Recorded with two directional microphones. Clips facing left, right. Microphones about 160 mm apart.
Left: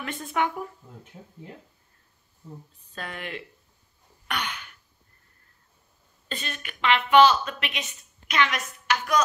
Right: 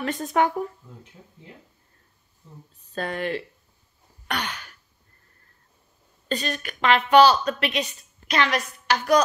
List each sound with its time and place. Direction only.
0.0 s a woman's voice: 40° right (ahead or behind)
2.9 s a woman's voice: 35° right (ahead or behind)
4.3 s a sound: 35° right (ahead or behind)
6.2 s a woman's voice: 40° right (ahead or behind)